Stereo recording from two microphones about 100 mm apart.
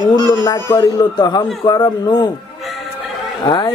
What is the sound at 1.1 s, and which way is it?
Speech, 45° left (ahead or behind).